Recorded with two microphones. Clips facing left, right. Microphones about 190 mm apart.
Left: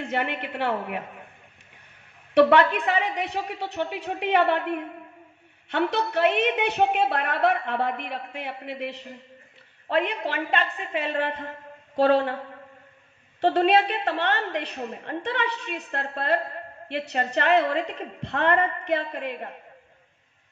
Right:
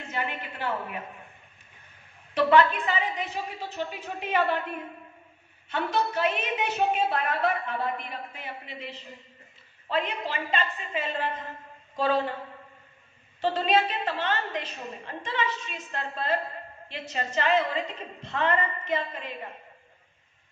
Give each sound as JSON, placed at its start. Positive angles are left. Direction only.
{"t": 0.0, "sound": "a woman's voice", "side_deg": 65}
{"t": 2.3, "sound": "a woman's voice", "side_deg": 65}
{"t": 13.4, "sound": "a woman's voice", "side_deg": 65}